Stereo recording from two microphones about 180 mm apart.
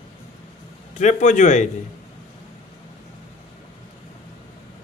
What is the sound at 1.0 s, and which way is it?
Speech, 45° left (ahead or behind).